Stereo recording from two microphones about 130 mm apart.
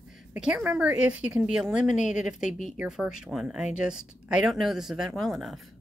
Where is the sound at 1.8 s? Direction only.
70° left (ahead or behind).